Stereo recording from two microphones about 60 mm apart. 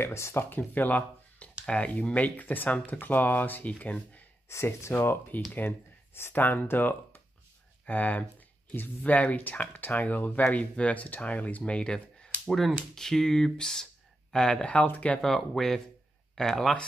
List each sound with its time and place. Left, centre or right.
0.0 s speech: left
4.5 s speech: left
4.9 s speech: left
15.2 s speech: centre